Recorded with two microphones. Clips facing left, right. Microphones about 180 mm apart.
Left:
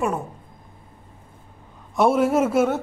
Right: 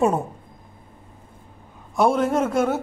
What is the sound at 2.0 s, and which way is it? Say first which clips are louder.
Speech: left 1 dB; 5° left (ahead or behind).